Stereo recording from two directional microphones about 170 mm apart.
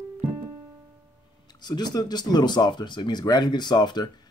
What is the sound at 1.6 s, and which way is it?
Speech, 25° left (ahead or behind).